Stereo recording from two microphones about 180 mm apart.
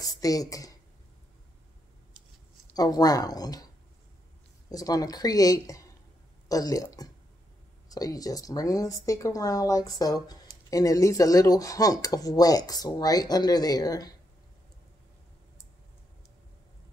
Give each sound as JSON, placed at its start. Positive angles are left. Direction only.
{"t": 0.0, "sound": "speech", "side_deg": 20}
{"t": 2.7, "sound": "speech", "side_deg": 20}
{"t": 4.6, "sound": "speech", "side_deg": 20}